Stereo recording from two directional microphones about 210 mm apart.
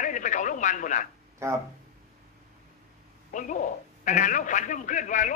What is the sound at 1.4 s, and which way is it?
Speech, 15° right (ahead or behind).